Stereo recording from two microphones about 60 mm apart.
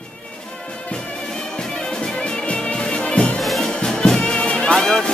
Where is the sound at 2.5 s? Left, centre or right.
Centre.